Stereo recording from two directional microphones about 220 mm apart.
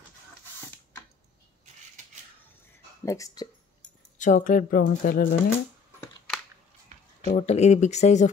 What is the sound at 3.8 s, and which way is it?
Speech, 35° left (ahead or behind).